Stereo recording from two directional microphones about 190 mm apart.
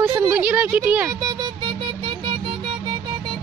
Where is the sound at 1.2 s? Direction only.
20° right (ahead or behind).